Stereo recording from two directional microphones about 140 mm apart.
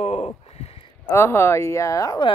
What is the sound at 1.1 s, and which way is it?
Speech, 20° left (ahead or behind).